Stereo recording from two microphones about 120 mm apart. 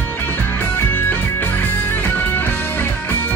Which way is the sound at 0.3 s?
20° left (ahead or behind).